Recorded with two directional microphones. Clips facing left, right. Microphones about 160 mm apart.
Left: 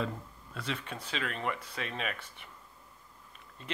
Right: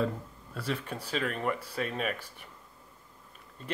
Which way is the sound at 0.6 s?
35° right (ahead or behind).